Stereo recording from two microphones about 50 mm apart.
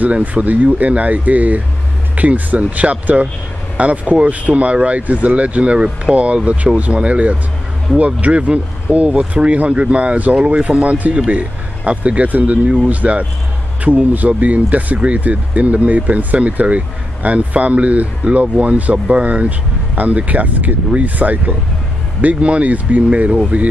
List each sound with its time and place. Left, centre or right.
0.0 s speech: right